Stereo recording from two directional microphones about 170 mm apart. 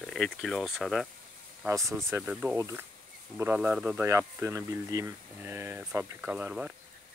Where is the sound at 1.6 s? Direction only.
15° right (ahead or behind).